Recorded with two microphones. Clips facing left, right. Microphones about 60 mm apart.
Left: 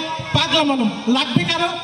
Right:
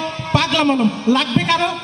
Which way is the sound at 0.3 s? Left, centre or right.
Right.